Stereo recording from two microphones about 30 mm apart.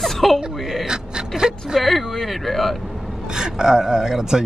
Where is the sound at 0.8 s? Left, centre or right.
Right.